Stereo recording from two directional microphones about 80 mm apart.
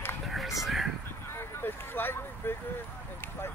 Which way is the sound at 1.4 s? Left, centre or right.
Left.